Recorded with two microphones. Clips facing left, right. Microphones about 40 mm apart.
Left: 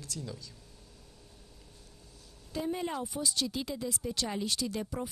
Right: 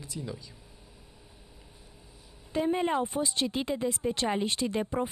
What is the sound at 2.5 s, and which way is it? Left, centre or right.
Speech, right.